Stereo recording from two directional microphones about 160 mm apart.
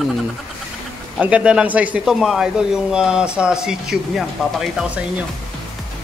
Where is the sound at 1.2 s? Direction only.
5° right (ahead or behind).